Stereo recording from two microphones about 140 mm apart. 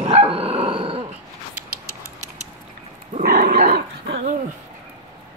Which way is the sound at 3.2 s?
90° right.